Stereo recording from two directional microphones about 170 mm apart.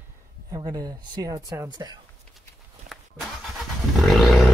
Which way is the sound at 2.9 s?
65° right (ahead or behind).